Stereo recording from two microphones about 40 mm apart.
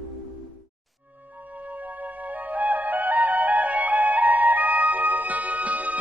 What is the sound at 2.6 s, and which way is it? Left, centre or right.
Music, right.